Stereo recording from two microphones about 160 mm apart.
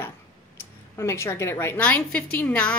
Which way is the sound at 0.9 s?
15° left (ahead or behind).